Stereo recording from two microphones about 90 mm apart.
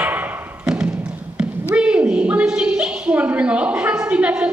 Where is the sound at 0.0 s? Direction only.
20° right (ahead or behind).